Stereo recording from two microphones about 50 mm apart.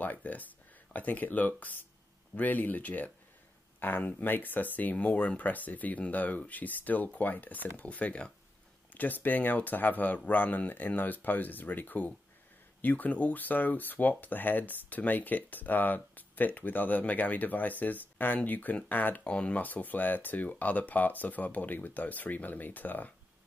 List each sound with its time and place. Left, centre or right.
0.0 s speech: left
8.9 s speech: left
19.2 s speech: left